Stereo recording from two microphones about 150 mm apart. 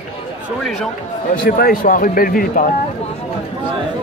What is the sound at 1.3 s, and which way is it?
A man's voice, 80° left.